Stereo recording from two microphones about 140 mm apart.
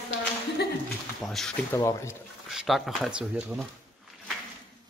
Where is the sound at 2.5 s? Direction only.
Centre (ahead or behind).